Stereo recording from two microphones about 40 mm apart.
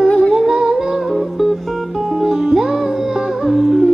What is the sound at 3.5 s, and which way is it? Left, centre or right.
Music, centre.